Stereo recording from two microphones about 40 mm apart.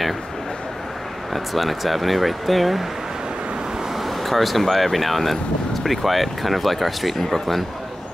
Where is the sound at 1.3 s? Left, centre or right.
Centre.